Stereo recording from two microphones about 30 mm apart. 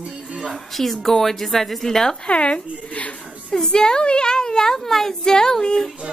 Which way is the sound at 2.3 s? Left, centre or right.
Left.